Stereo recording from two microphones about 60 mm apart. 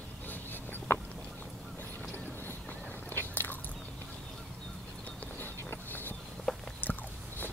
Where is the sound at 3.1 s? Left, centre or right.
Left.